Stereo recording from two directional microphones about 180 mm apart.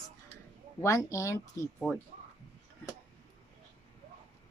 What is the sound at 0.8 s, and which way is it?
Speech, 15° left (ahead or behind).